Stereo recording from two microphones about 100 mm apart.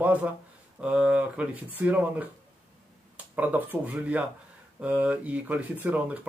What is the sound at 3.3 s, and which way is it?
Speech, 15° right (ahead or behind).